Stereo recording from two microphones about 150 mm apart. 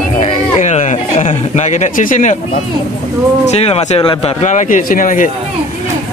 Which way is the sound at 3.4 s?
45° left (ahead or behind).